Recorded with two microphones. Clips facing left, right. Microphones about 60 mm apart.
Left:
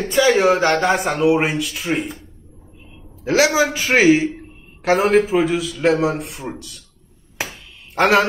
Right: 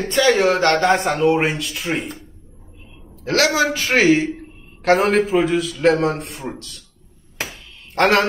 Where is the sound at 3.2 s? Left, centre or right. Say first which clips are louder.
Left 1 dB; centre.